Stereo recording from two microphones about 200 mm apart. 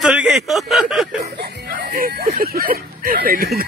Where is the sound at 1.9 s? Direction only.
40° right (ahead or behind).